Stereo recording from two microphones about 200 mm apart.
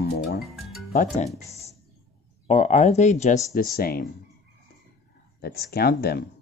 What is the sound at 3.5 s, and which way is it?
Speech, 45° left (ahead or behind).